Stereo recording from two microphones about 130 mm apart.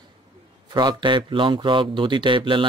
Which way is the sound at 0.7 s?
35° right (ahead or behind).